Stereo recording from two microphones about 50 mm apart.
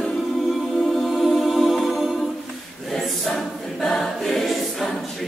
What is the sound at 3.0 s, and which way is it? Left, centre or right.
Choir, centre.